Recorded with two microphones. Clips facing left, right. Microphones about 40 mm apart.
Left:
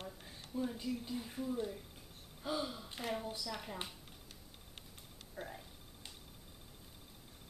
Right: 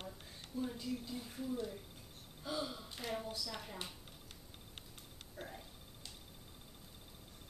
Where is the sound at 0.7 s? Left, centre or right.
Centre.